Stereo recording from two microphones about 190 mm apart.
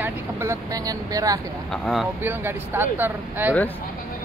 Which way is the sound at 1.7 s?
Centre (ahead or behind).